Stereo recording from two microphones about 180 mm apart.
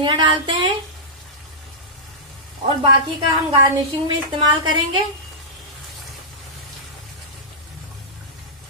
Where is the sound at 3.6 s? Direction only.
25° right (ahead or behind).